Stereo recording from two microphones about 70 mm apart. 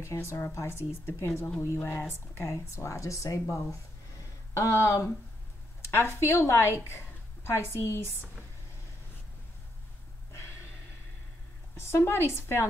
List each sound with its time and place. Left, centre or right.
0.0 s a woman's voice: left
11.9 s a woman's voice: left